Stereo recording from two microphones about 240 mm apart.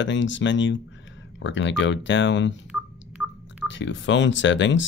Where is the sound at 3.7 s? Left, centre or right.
Left.